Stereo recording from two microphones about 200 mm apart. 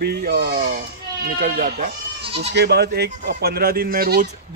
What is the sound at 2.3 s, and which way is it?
Speech, 30° right (ahead or behind).